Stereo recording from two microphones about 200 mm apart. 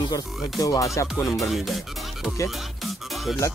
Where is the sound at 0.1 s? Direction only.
15° left (ahead or behind).